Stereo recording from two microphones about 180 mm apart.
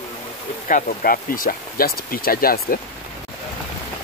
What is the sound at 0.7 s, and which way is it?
Speech, 45° left (ahead or behind).